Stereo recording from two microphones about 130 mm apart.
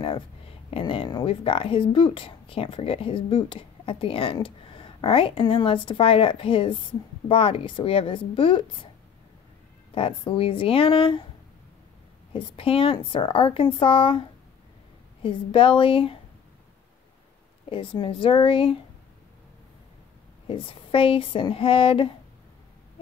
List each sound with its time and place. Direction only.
0.7 s speech: 45° left (ahead or behind)
9.9 s speech: 45° left (ahead or behind)
12.3 s a woman's voice: 45° left (ahead or behind)
15.2 s speech: 40° left (ahead or behind)
17.6 s a woman's voice: 40° left (ahead or behind)
20.4 s speech: 45° left (ahead or behind)